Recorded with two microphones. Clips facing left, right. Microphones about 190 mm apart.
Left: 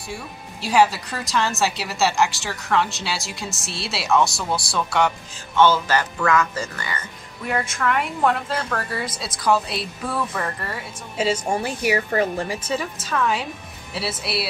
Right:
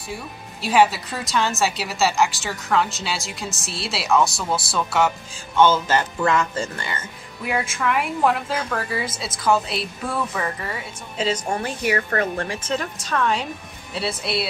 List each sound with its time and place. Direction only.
0.1 s speech: centre (ahead or behind)
5.6 s speech: 20° right (ahead or behind)
7.4 s speech: 5° right (ahead or behind)